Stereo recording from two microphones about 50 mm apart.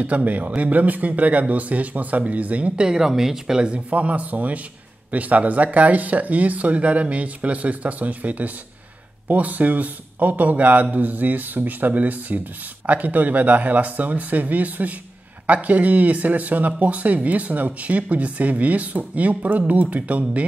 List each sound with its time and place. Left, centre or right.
0.0 s speech: right
2.9 s a woman's voice: centre
3.6 s a man's voice: right